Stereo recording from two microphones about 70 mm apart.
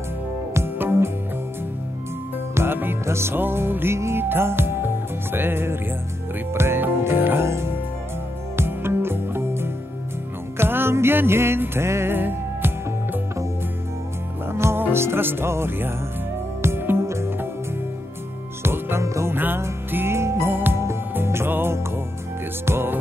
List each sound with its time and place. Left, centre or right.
0.6 s music: right
2.5 s music: right
14.5 s music: right
18.6 s music: right
19.3 s music: right